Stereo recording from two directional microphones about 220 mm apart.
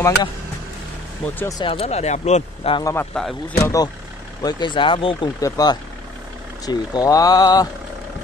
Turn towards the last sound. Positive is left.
turn(degrees=15)  # may be behind; listen again after turning